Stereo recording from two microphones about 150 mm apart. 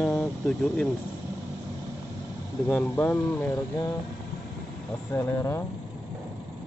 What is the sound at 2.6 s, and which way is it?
Speech, 10° left (ahead or behind).